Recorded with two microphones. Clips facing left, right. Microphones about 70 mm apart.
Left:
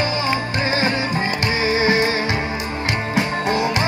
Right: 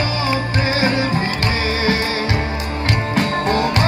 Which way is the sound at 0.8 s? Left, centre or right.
Left.